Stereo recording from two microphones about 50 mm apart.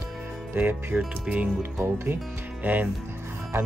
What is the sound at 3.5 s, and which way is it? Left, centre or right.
Speech, right.